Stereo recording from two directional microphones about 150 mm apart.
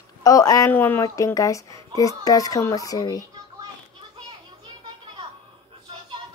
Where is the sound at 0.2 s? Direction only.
25° left (ahead or behind).